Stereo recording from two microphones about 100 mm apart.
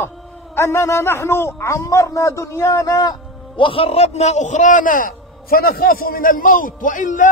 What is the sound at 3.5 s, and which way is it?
Speech, 60° left (ahead or behind).